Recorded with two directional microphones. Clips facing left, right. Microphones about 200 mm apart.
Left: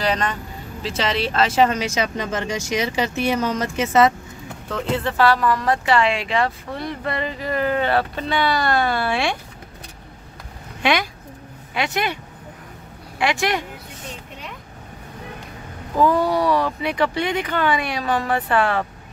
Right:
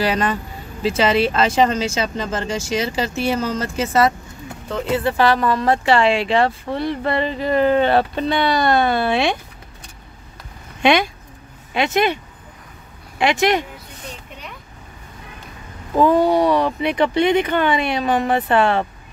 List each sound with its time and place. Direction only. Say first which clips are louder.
0.0 s speech: right 3 dB; 5° right (ahead or behind); by 4.1 s 20° left (ahead or behind)
4.6 s speech: right 3 dB; 5° right (ahead or behind)
5.1 s speech: left 1 dB; 20° right (ahead or behind)
10.8 s speech: right 5 dB; 25° right (ahead or behind)
13.2 s speech: right 4 dB; 20° right (ahead or behind)
16.0 s speech: right 4 dB; 20° right (ahead or behind)